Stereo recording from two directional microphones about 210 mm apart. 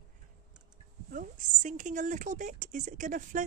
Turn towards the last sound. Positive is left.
turn(degrees=-40)  # may be behind; listen again after turning